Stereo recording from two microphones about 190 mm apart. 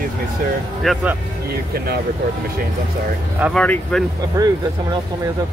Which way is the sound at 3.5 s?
5° left (ahead or behind).